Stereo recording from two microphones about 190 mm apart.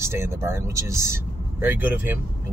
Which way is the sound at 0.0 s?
15° right (ahead or behind).